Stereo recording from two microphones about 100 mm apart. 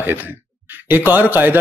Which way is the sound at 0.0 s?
20° right (ahead or behind).